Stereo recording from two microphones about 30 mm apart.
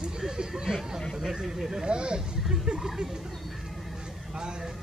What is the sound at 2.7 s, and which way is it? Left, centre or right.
Speech, centre.